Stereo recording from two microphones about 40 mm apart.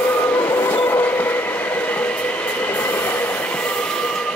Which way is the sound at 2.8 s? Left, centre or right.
Left.